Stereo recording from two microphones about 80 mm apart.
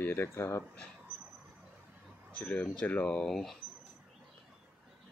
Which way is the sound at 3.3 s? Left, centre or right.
Centre.